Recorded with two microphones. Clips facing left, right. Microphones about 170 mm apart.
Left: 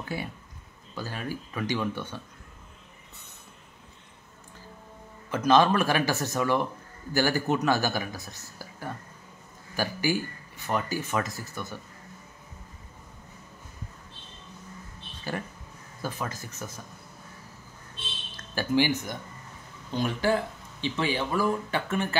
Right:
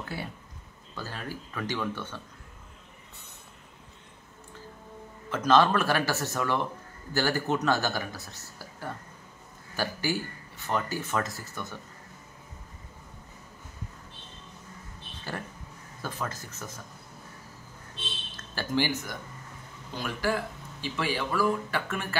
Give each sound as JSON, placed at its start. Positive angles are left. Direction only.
{"t": 0.1, "sound": "speech", "side_deg": 15}
{"t": 5.3, "sound": "speech", "side_deg": 15}
{"t": 9.8, "sound": "speech", "side_deg": 15}
{"t": 16.0, "sound": "speech", "side_deg": 10}
{"t": 18.3, "sound": "speech", "side_deg": 15}